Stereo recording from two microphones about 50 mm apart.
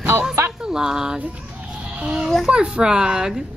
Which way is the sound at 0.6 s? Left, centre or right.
Centre.